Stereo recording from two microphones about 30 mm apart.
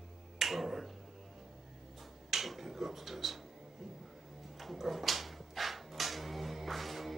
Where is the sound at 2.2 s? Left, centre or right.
Centre.